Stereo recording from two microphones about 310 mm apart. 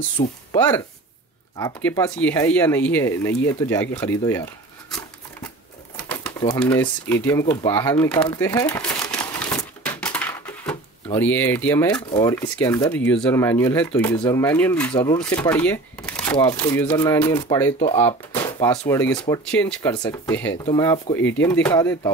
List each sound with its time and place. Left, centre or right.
0.2 s speech: centre
6.0 s a sound: centre
11.1 s speech: centre